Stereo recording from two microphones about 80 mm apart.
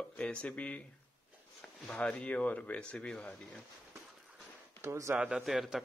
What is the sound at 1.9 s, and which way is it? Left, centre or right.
Speech, centre.